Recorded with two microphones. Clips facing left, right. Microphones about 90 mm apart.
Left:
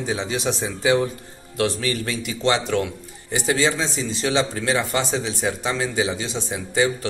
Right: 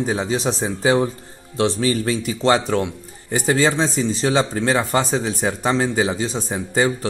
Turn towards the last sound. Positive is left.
turn(degrees=-40)  # may be behind; listen again after turning